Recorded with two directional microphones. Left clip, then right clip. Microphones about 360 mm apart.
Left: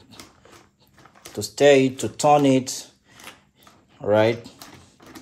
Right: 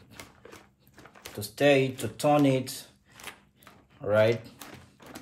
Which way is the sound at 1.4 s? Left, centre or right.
Centre.